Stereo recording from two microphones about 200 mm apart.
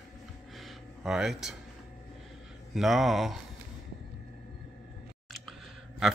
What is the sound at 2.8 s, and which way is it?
Speech, centre (ahead or behind).